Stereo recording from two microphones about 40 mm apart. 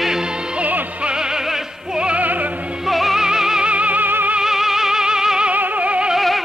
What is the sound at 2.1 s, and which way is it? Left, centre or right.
Music, right.